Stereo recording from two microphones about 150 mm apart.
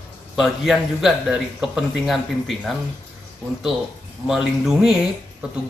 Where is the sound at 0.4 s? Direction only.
Centre (ahead or behind).